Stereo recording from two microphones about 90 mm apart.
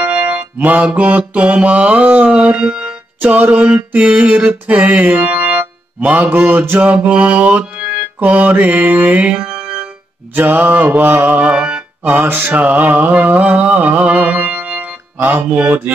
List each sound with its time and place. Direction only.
0.0 s music: 15° right (ahead or behind)
3.2 s mantra: 15° right (ahead or behind)
10.3 s music: 20° right (ahead or behind)